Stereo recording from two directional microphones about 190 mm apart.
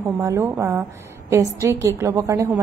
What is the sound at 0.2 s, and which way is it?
A woman's voice, 15° right (ahead or behind).